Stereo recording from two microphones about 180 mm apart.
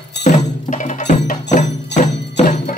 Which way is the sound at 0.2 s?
45° left (ahead or behind).